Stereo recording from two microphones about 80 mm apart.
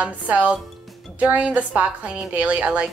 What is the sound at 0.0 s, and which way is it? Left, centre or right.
Speech, centre.